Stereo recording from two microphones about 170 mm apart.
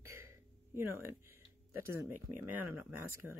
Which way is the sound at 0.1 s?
15° right (ahead or behind).